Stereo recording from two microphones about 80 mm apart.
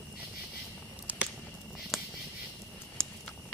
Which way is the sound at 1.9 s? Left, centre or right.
Centre.